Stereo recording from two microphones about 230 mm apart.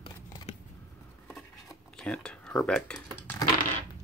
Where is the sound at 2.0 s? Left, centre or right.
Centre.